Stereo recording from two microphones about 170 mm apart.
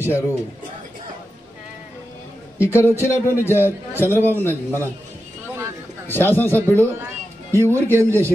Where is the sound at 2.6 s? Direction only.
15° left (ahead or behind).